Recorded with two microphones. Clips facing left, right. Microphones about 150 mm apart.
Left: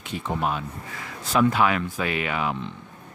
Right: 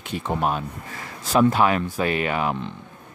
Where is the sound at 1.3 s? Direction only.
35° right (ahead or behind).